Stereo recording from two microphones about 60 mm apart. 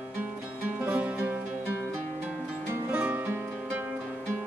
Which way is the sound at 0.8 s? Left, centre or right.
Right.